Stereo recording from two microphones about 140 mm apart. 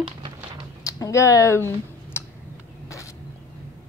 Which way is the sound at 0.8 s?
25° left (ahead or behind).